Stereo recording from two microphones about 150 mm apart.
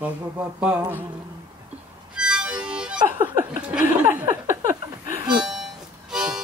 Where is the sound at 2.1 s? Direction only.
5° right (ahead or behind).